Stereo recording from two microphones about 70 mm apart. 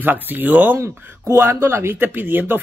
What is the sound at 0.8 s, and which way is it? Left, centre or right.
Speech, right.